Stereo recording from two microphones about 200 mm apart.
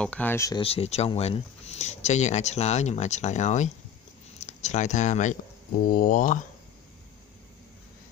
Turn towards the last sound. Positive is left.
turn(degrees=40)  # may be behind; listen again after turning